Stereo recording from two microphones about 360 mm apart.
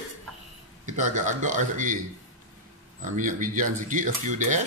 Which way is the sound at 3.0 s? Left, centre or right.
Right.